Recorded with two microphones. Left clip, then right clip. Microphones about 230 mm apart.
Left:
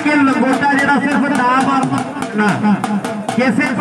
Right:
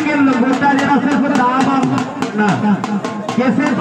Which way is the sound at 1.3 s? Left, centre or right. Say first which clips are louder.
Left 1 dB; left.